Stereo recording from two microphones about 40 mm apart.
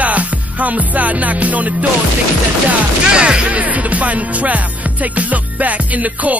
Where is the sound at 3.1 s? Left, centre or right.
Right.